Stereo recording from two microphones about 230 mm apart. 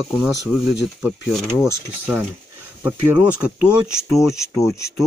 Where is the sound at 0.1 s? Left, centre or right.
Centre.